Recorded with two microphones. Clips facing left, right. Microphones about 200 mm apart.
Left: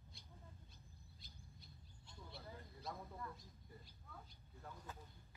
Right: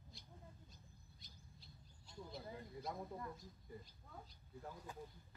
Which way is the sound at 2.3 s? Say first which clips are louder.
Right 4 dB; 15° right (ahead or behind).